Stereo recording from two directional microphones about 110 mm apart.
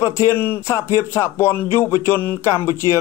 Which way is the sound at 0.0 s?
25° left (ahead or behind).